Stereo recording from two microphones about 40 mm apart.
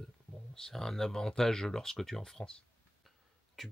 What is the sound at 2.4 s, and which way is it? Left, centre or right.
Speech, left.